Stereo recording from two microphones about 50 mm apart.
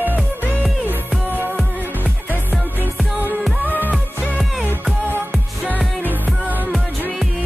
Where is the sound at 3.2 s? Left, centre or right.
Right.